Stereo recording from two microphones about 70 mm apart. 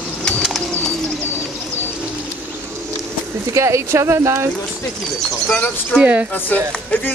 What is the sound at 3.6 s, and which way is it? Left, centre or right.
Speech, right.